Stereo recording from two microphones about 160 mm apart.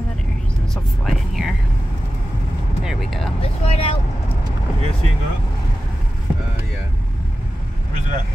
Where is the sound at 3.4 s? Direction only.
35° left (ahead or behind).